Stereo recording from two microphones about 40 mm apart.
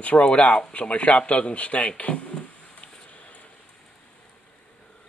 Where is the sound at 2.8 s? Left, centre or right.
Left.